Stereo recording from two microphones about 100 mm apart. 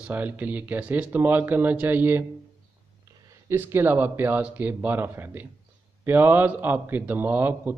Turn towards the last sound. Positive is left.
turn(degrees=-20)  # may be behind; listen again after turning